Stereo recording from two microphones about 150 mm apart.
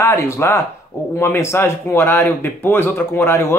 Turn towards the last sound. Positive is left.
turn(degrees=15)  # may be behind; listen again after turning